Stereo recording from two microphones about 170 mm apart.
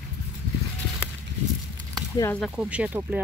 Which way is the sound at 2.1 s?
15° left (ahead or behind).